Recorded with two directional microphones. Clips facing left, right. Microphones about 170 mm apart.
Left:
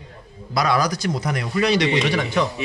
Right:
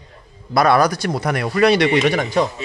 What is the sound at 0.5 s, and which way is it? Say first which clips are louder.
A man's voice: right 6 dB; 55° right (ahead or behind).